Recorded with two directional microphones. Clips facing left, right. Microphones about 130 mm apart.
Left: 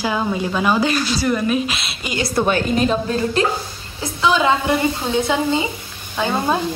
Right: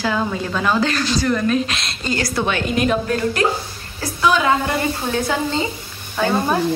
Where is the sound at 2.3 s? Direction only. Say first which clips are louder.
Left 5 dB; 40° left (ahead or behind).